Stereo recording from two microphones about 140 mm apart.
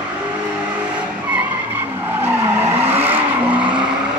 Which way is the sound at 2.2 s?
15° right (ahead or behind).